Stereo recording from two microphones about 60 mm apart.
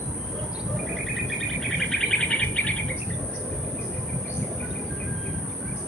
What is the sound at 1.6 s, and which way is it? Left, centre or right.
Insect, centre.